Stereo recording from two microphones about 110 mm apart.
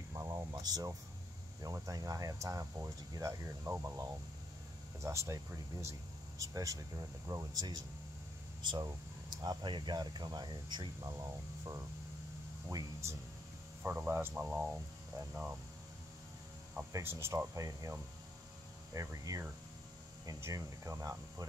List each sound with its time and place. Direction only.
0.1 s a sound: 30° right (ahead or behind)
1.6 s speech: 30° right (ahead or behind)
13.8 s speech: 15° right (ahead or behind)
16.9 s speech: 25° right (ahead or behind)